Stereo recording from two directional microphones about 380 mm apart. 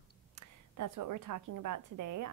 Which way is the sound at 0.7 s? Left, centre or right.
Right.